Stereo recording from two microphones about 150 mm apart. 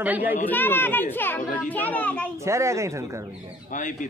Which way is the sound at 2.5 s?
20° right (ahead or behind).